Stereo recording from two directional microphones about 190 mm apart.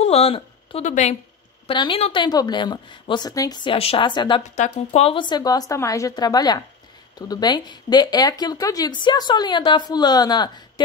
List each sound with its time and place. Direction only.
0.0 s speech: 30° left (ahead or behind)
1.7 s speech: 25° left (ahead or behind)
4.4 s speech: 35° left (ahead or behind); by 10.5 s 20° left (ahead or behind)